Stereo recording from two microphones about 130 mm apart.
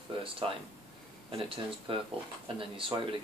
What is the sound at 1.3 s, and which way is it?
Speech, 45° right (ahead or behind).